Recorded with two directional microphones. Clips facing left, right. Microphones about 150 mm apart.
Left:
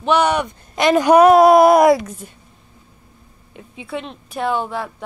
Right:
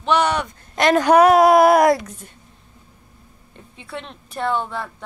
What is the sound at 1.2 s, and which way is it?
Female singing, 25° left (ahead or behind).